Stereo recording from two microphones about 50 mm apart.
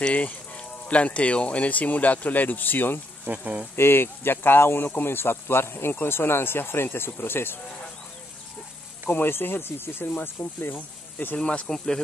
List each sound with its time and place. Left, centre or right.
0.1 s speech: left
3.3 s speech: right
3.7 s speech: left
9.1 s speech: left
11.3 s speech: left